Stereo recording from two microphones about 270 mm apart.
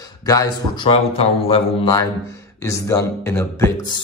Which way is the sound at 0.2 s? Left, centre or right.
Centre.